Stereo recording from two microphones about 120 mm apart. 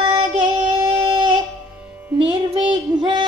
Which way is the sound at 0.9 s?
45° right (ahead or behind).